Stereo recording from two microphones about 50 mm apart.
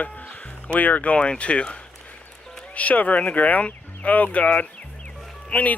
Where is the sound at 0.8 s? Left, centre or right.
Left.